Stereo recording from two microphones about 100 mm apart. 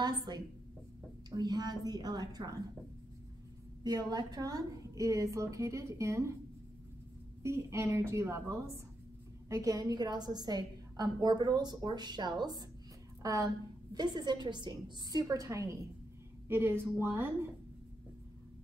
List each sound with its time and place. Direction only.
0.0 s a woman's voice: 45° right (ahead or behind)
3.8 s a woman's voice: 40° right (ahead or behind)
7.4 s a woman's voice: 30° right (ahead or behind); by 12.6 s 45° right (ahead or behind)
13.2 s a woman's voice: 35° right (ahead or behind)
13.9 s a woman's voice: 45° right (ahead or behind); by 17.5 s 25° right (ahead or behind)